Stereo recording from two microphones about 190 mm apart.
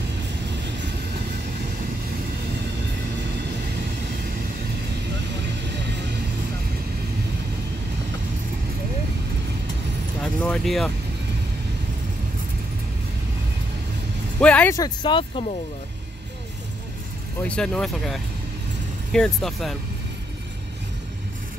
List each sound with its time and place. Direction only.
10.2 s vehicle: 5° left (ahead or behind)
14.4 s speech: 5° left (ahead or behind)
14.8 s speech: 25° left (ahead or behind)
17.4 s speech: 5° left (ahead or behind)